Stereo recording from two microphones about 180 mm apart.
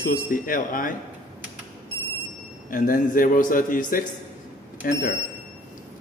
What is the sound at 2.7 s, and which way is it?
A man's voice, 50° left (ahead or behind).